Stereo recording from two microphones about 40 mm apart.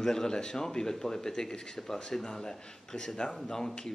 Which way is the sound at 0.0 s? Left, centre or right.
Centre.